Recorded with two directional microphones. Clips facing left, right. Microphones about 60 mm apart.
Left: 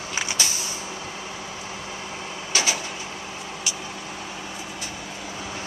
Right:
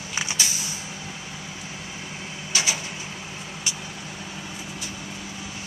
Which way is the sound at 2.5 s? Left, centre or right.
Left.